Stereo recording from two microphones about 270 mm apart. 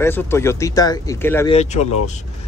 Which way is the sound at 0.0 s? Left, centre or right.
Centre.